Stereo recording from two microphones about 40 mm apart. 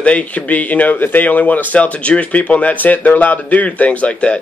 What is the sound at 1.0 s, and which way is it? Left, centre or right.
Speech, left.